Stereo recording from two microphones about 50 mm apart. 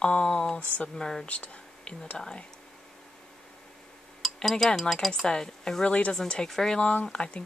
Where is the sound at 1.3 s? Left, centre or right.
Left.